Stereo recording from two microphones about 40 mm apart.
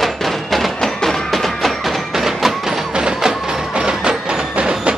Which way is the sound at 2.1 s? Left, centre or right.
Centre.